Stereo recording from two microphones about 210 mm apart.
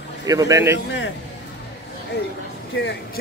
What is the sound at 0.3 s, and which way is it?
Speech, 15° right (ahead or behind).